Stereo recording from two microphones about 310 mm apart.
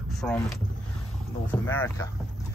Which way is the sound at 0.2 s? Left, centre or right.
Centre.